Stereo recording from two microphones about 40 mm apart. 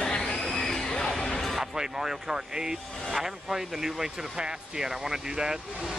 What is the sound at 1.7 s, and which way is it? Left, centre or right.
Speech, centre.